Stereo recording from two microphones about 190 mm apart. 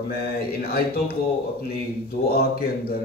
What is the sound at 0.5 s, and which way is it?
Speech, 50° left (ahead or behind).